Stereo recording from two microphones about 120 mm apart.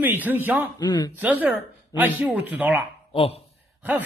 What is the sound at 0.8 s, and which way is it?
Speech, 35° left (ahead or behind).